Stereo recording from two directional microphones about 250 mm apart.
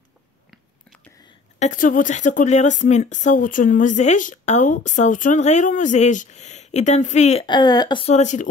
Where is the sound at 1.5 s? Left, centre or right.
Left.